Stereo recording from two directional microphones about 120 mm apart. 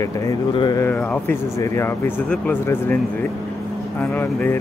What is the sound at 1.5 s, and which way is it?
Speech, 25° left (ahead or behind).